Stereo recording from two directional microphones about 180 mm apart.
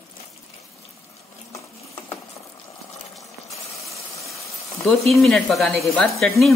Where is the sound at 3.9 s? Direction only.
15° left (ahead or behind).